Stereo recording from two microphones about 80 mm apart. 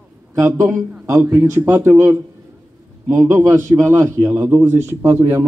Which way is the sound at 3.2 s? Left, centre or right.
Right.